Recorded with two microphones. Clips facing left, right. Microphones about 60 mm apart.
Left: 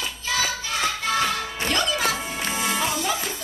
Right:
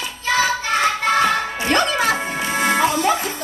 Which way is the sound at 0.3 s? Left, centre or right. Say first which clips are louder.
Right 9 dB; right.